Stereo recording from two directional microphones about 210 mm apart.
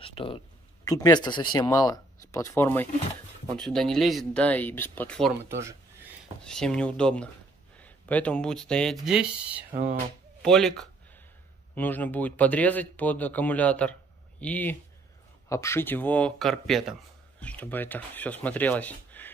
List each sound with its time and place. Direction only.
0.0 s speech: 25° left (ahead or behind); by 5.3 s 5° left (ahead or behind)
5.5 s speech: 15° right (ahead or behind)
6.4 s speech: 5° left (ahead or behind)